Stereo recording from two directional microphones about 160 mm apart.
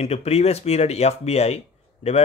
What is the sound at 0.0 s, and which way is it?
Speech, 40° left (ahead or behind).